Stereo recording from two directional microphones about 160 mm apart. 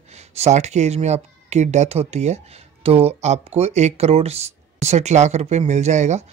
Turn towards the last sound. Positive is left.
turn(degrees=-45)  # may be behind; listen again after turning